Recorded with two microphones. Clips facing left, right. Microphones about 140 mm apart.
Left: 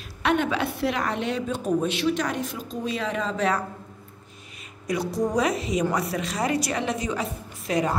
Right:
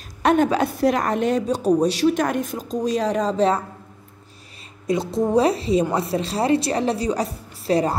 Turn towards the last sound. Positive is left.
turn(degrees=-35)  # may be behind; listen again after turning